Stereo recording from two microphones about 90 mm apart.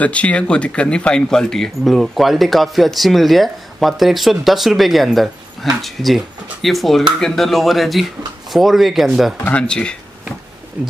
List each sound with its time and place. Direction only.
0.0 s speech: 15° left (ahead or behind); by 9.3 s centre (ahead or behind)
9.4 s speech: 15° left (ahead or behind)
10.8 s speech: 15° right (ahead or behind)